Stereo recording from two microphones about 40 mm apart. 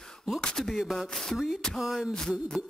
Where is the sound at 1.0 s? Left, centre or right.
Centre.